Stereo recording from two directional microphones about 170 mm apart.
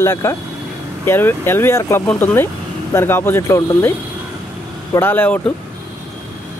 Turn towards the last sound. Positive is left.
turn(degrees=10)  # may be behind; listen again after turning